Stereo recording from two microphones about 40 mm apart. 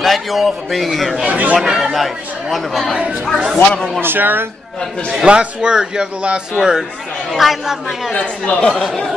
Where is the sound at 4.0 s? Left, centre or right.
Right.